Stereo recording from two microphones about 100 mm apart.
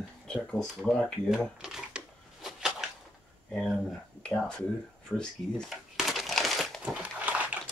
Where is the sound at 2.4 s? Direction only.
5° right (ahead or behind).